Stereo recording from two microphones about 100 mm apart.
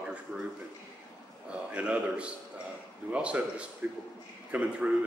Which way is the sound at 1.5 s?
10° right (ahead or behind).